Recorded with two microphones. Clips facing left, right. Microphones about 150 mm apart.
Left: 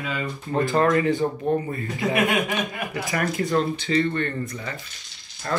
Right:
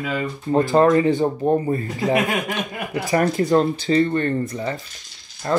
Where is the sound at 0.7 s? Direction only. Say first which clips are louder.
Right 4 dB; 25° right (ahead or behind).